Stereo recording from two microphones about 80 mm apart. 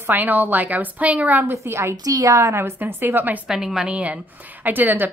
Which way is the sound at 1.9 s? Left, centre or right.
Right.